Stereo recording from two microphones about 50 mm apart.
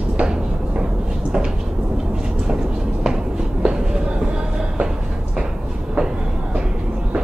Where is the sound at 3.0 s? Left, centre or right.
Centre.